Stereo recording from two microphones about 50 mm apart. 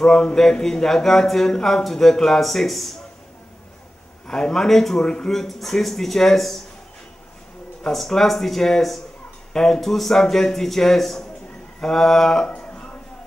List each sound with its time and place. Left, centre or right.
0.0 s speech: centre
4.3 s speech: centre
5.0 s speech: centre
5.3 s speech: centre
7.8 s speech: centre
12.4 s a sound: left